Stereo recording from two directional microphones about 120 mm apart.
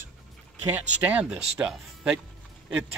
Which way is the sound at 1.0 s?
15° right (ahead or behind).